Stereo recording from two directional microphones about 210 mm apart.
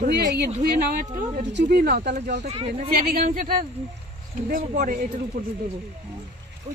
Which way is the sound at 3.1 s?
40° right (ahead or behind).